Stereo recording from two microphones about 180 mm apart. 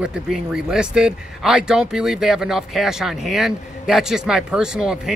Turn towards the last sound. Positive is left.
turn(degrees=-5)  # may be behind; listen again after turning